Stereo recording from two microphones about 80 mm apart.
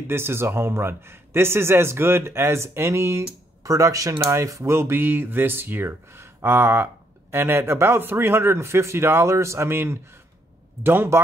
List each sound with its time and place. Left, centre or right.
0.1 s a man's voice: right